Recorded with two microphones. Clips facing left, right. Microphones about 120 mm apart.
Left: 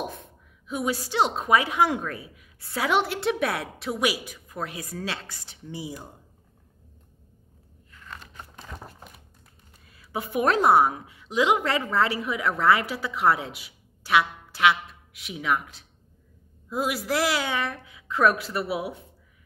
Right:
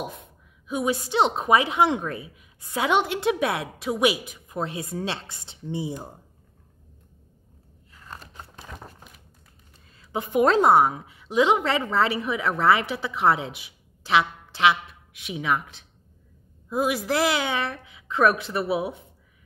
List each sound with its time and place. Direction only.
0.7 s a woman's voice: 25° right (ahead or behind)
7.9 s a sound: 35° right (ahead or behind)
8.5 s crumpling: centre (ahead or behind)
9.9 s a woman's voice: 25° right (ahead or behind)
16.6 s a woman's voice: 20° right (ahead or behind)